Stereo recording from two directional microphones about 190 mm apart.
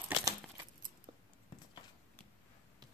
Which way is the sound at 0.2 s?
20° right (ahead or behind).